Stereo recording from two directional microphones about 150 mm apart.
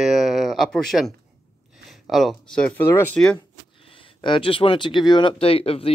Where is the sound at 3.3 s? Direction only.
35° left (ahead or behind).